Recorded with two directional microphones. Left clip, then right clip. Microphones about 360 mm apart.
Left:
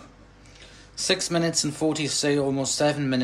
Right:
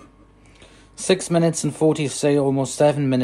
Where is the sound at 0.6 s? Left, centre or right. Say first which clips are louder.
Left 4 dB; centre.